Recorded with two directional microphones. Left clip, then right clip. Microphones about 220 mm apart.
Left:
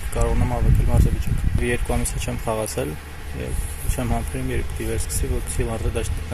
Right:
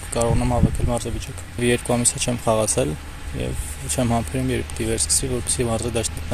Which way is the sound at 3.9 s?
45° right (ahead or behind).